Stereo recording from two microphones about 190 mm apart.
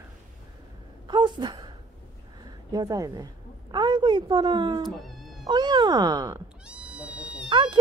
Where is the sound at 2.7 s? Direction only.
20° right (ahead or behind).